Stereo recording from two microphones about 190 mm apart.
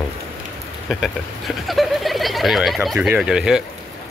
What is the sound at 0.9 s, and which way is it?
Speech, centre (ahead or behind).